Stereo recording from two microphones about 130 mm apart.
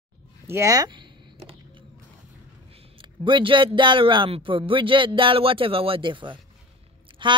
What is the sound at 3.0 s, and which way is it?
A man's voice, 40° right (ahead or behind).